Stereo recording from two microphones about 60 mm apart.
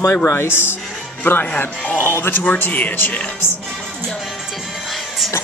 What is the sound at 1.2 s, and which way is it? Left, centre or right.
Speech, left.